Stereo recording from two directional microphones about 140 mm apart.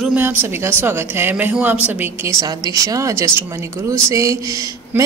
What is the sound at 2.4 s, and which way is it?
Speech, 25° right (ahead or behind).